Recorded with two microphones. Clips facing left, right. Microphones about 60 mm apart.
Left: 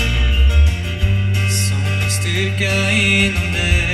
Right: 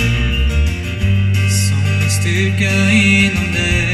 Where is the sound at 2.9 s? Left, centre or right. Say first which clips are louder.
Right 5 dB; right.